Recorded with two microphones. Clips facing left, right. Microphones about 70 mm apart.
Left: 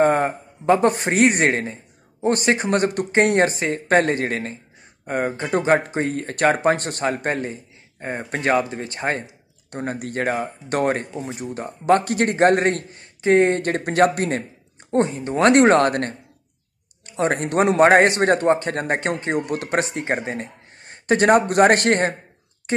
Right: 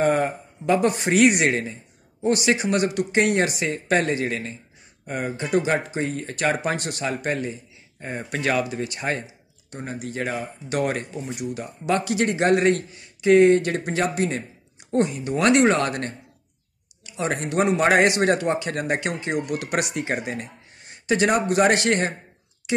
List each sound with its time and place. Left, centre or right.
0.0 s a man's voice: left
9.7 s a man's voice: left
14.9 s a man's voice: left